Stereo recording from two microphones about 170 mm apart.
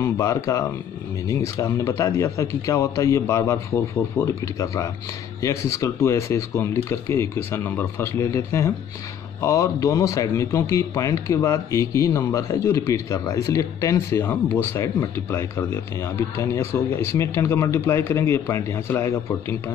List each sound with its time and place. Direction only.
0.0 s speech: 20° left (ahead or behind)